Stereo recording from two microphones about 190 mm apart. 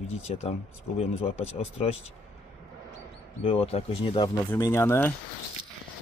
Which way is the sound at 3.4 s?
30° left (ahead or behind).